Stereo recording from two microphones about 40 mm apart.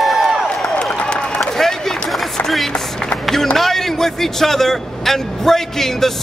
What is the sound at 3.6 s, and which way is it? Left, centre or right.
A man's voice, centre.